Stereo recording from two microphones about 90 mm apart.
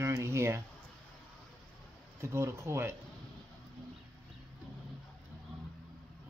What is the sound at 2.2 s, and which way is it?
Speech, 30° right (ahead or behind).